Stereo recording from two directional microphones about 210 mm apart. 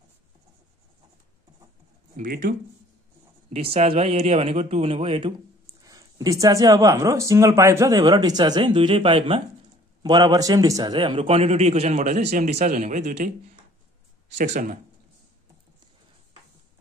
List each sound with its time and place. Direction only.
2.1 s speech: 40° right (ahead or behind)
3.5 s a man's voice: 30° right (ahead or behind)
14.4 s speech: 35° right (ahead or behind)